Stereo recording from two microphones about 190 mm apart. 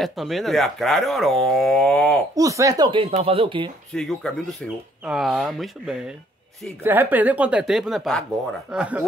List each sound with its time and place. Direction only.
0.0 s speech: centre (ahead or behind)
2.3 s speech: 15° right (ahead or behind)
3.9 s a woman's voice: 5° left (ahead or behind)